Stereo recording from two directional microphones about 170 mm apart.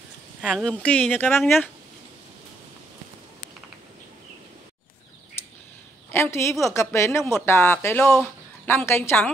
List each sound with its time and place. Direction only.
0.4 s speech: centre (ahead or behind)
6.0 s a woman's voice: 15° left (ahead or behind)
8.0 s a woman's voice: 5° left (ahead or behind)